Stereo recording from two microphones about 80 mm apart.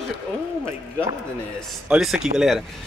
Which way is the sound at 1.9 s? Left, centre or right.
Centre.